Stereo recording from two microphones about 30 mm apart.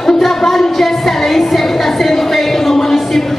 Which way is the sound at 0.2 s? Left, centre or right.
Centre.